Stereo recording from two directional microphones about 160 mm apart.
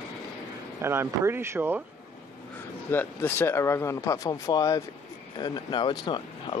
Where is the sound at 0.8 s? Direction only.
15° right (ahead or behind).